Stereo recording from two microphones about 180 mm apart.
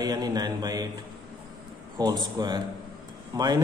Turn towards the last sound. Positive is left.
turn(degrees=-20)  # may be behind; listen again after turning